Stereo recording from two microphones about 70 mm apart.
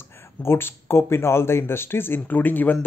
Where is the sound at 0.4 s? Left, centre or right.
Left.